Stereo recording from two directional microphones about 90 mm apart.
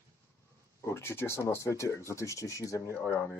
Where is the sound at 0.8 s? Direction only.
30° left (ahead or behind).